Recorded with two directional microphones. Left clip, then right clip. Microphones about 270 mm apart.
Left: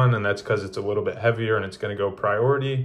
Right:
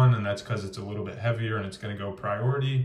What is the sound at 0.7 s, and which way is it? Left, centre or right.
Speech, centre.